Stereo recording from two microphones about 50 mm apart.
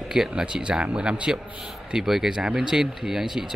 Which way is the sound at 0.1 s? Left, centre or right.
Centre.